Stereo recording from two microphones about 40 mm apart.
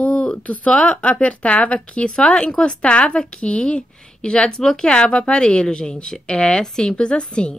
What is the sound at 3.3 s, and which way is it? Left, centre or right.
A woman's voice, left.